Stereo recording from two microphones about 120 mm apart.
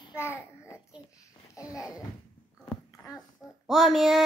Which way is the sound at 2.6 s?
20° left (ahead or behind).